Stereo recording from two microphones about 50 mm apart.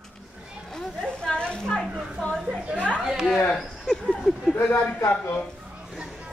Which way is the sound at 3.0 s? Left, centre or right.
Centre.